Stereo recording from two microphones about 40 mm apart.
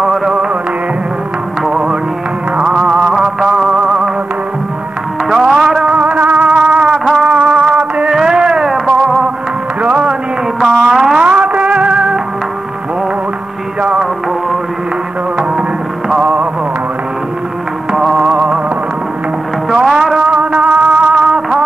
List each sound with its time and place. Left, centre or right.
0.0 s music: centre
1.7 s music: centre
2.8 s a sound: right
3.5 s music: centre
5.3 s music: centre
5.9 s music: right
8.1 s music: centre
9.8 s music: right
10.9 s music: centre
11.1 s music: right
18.1 s music: right
19.7 s music: centre
20.2 s music: right
21.1 s music: centre